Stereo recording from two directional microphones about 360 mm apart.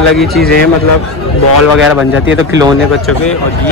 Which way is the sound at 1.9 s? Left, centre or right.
Centre.